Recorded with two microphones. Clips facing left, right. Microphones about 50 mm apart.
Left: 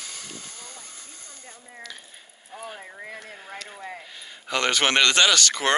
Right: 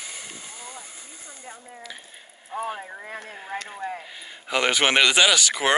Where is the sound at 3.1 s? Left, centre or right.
Right.